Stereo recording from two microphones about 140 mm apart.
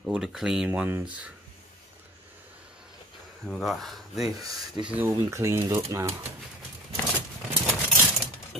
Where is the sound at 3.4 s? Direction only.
Centre (ahead or behind).